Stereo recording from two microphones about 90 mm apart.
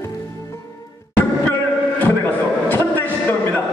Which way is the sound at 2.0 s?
20° left (ahead or behind).